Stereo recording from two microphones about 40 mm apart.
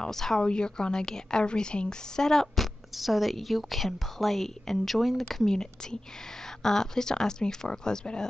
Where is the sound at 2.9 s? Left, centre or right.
Centre.